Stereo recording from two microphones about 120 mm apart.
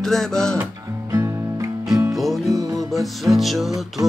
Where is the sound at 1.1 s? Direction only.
25° right (ahead or behind).